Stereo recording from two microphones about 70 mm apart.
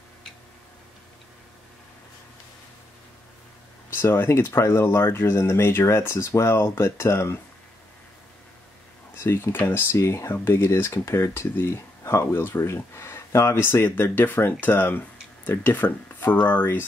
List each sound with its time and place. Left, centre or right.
3.9 s speech: left
9.1 s speech: left